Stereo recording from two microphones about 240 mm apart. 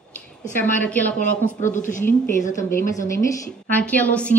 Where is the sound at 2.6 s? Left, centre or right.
Centre.